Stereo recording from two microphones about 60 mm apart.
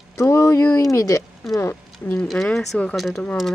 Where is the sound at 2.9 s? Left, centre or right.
Centre.